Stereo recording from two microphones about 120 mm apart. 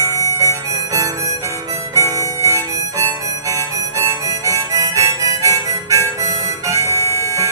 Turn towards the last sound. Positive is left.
turn(degrees=-25)  # may be behind; listen again after turning